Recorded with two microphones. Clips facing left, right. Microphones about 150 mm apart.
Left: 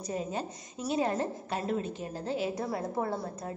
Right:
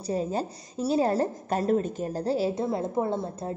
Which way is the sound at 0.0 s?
35° right (ahead or behind).